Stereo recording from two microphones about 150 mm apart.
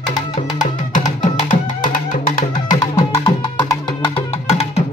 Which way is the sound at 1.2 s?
60° left (ahead or behind).